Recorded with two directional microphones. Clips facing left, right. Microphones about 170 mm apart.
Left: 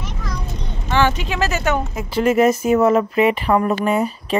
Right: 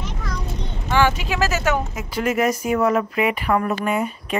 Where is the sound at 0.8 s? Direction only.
10° right (ahead or behind).